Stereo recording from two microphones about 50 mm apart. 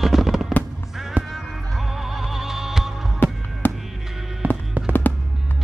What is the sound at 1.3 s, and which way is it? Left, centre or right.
Music, centre.